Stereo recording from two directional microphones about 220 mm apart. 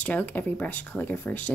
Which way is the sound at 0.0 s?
5° left (ahead or behind).